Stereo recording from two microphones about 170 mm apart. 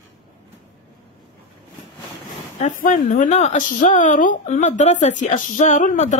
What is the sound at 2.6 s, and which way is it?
A woman's voice, 50° left (ahead or behind).